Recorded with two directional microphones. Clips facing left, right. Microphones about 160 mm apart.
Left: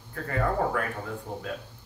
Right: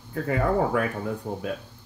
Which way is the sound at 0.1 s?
15° right (ahead or behind).